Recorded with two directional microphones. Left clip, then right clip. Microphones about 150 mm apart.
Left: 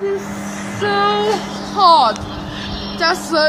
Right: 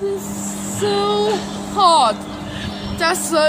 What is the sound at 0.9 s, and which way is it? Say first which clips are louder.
Speech: left 2 dB; 10° right (ahead or behind).